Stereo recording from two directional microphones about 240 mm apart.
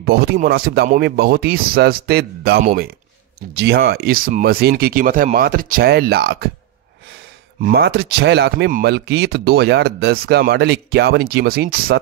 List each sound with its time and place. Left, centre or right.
0.0 s speech: right
7.6 s speech: right